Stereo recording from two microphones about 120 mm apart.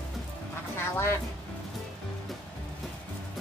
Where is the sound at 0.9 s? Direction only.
20° left (ahead or behind).